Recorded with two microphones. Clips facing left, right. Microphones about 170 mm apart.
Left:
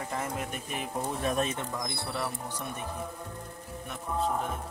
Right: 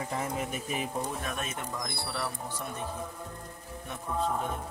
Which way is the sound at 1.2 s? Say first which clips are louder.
Left 6 dB; 30° left (ahead or behind).